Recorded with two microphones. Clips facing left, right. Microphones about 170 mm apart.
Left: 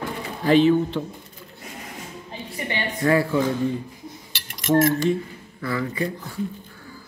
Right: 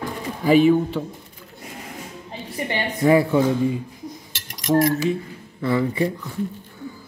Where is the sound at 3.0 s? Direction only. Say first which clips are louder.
Right 4 dB; 20° right (ahead or behind).